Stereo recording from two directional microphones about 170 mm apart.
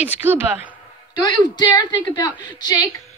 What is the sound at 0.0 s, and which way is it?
Speech, 10° right (ahead or behind).